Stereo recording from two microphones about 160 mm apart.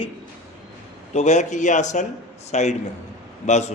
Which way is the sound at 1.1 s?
50° left (ahead or behind).